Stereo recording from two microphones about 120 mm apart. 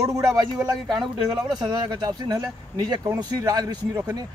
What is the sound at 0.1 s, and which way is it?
Speech, 30° right (ahead or behind).